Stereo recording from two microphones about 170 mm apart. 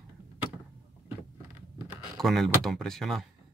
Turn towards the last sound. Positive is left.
turn(degrees=0)  # may be behind; listen again after turning